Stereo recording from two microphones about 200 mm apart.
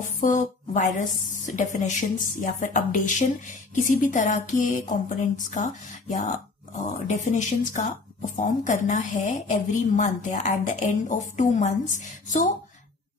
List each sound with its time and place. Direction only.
0.2 s speech: 40° left (ahead or behind)